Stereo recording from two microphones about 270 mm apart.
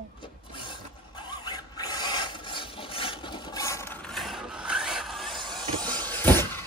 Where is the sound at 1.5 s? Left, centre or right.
Centre.